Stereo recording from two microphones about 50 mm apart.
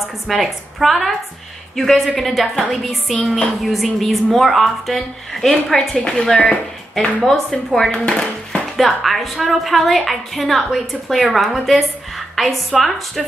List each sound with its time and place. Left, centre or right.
0.3 s a woman's voice: centre
5.9 s a woman's voice: centre